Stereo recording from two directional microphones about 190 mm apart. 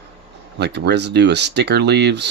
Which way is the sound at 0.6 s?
60° right (ahead or behind).